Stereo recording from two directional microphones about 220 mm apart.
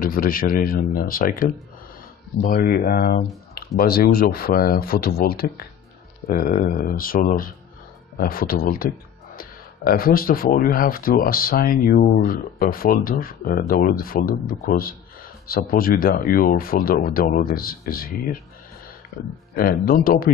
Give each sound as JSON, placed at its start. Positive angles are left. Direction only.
{"t": 0.0, "sound": "speech", "side_deg": 40}
{"t": 19.5, "sound": "speech", "side_deg": 40}